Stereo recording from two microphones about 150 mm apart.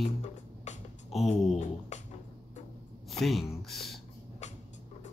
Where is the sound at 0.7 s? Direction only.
50° left (ahead or behind).